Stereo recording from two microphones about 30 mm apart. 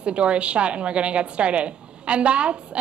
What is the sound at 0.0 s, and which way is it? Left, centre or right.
A woman's voice, right.